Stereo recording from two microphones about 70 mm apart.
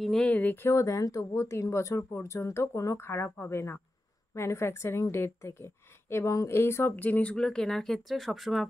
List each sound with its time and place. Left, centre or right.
0.0 s speech: centre
0.3 s speech: left
0.7 s a woman's voice: left; by 8.6 s centre